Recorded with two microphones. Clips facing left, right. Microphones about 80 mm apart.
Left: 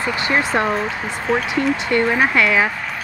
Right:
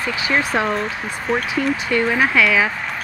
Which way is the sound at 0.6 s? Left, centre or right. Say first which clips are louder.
Left 1 dB; centre.